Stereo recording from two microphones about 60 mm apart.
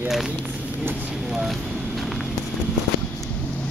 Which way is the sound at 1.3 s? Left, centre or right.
Centre.